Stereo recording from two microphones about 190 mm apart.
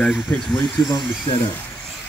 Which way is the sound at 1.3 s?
25° left (ahead or behind).